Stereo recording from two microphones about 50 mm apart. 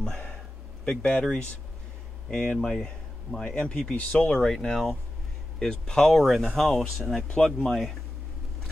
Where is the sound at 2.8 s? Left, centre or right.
Centre.